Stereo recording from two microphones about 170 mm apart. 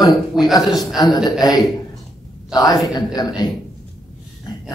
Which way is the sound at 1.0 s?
25° left (ahead or behind).